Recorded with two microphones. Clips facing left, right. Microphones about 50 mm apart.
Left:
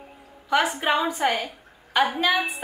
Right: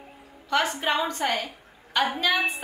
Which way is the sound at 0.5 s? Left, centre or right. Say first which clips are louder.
Left 3 dB; centre.